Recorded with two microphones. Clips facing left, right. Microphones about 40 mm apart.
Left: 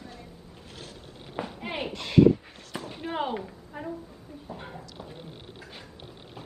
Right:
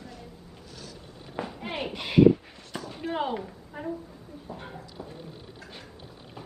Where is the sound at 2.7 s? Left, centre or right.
Centre.